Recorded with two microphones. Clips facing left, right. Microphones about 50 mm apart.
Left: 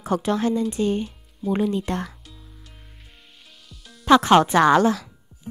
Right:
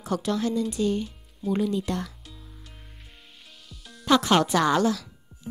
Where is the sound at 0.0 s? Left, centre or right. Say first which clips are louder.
Left 4 dB; left.